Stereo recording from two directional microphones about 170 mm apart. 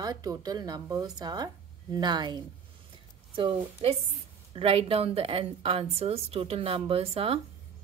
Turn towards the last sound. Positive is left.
turn(degrees=-35)  # may be behind; listen again after turning